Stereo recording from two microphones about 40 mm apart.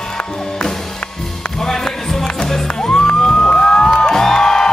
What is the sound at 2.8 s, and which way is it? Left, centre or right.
Music, left.